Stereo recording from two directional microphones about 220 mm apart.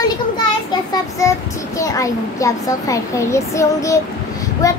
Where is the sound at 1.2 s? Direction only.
15° left (ahead or behind).